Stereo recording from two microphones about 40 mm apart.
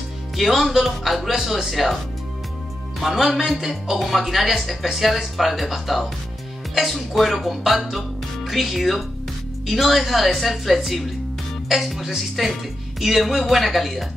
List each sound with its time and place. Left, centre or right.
0.4 s speech: centre
3.0 s speech: centre
4.0 s speech: centre